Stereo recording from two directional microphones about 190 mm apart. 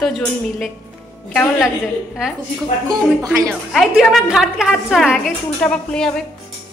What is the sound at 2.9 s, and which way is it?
Speech, 15° right (ahead or behind).